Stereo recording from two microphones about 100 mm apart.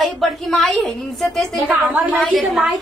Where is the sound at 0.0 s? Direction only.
Centre (ahead or behind).